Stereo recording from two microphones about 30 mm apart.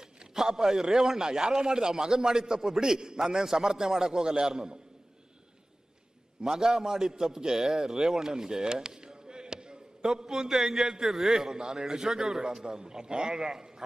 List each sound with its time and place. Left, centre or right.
0.2 s a man's voice: right
3.2 s a man's voice: centre
6.4 s a man's voice: centre